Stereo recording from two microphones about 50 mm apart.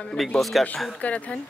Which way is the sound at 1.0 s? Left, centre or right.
Left.